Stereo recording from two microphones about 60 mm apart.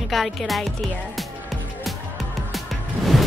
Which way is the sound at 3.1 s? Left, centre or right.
Centre.